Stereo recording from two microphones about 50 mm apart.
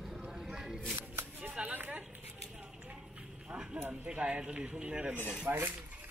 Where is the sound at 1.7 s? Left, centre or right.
Right.